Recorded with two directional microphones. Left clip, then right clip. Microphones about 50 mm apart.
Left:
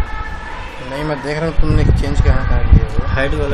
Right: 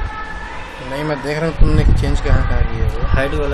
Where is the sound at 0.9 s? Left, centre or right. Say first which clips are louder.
Even; centre.